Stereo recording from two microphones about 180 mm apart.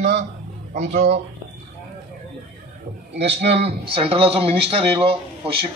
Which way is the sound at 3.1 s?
35° right (ahead or behind).